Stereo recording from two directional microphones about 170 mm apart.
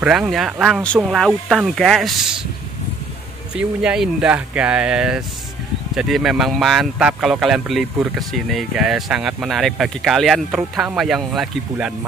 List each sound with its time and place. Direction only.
0.0 s speech: 5° right (ahead or behind)
3.5 s speech: 5° right (ahead or behind)